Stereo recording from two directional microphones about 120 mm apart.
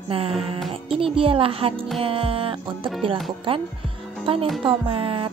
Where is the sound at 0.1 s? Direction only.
50° right (ahead or behind).